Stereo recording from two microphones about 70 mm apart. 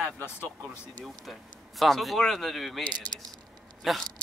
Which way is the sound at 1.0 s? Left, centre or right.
Centre.